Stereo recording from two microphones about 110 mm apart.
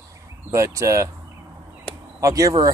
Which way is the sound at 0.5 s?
30° right (ahead or behind).